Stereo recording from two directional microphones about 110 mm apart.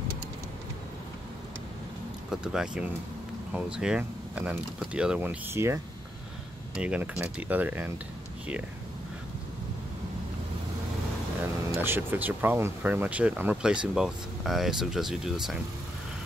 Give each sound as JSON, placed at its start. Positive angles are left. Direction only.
{"t": 2.4, "sound": "speech", "side_deg": -5}
{"t": 6.7, "sound": "speech", "side_deg": -10}
{"t": 11.8, "sound": "speech", "side_deg": -20}